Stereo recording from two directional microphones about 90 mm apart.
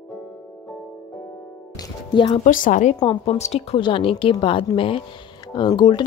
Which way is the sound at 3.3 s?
75° left (ahead or behind).